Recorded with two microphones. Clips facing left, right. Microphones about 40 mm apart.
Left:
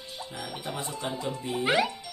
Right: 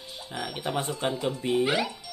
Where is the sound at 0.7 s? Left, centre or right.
Right.